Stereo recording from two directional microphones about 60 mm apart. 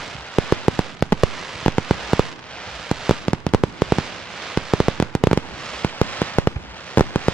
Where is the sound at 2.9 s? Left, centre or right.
Centre.